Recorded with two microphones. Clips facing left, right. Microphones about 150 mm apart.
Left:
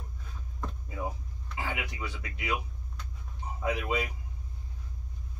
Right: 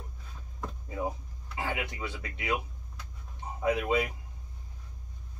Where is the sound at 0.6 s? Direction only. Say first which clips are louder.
Right 2 dB; 25° right (ahead or behind).